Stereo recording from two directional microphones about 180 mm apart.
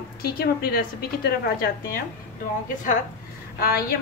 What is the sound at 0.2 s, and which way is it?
A woman's voice, 55° left (ahead or behind).